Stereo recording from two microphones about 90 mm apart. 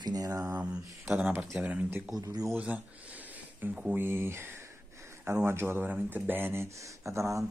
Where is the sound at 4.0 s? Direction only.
25° right (ahead or behind).